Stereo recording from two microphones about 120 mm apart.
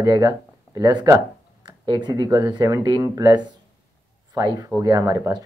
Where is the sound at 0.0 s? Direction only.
35° right (ahead or behind).